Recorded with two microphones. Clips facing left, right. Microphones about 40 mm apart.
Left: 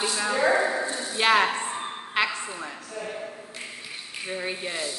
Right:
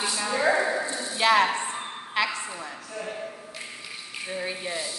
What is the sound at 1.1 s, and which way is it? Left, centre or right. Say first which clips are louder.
Speech: even; centre.